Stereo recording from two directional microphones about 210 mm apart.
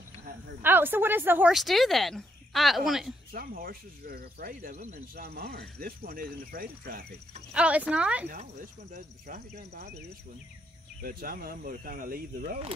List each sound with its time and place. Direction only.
0.6 s speech: 10° right (ahead or behind)
3.3 s speech: 45° right (ahead or behind)
7.5 s speech: 5° right (ahead or behind)
8.3 s speech: 40° right (ahead or behind)
11.0 s speech: 45° right (ahead or behind)